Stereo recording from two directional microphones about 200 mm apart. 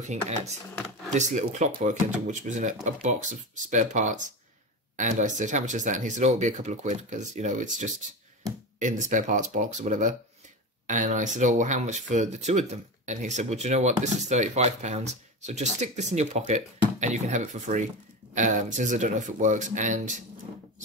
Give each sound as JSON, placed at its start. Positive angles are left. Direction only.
{"t": 0.0, "sound": "speech", "side_deg": -35}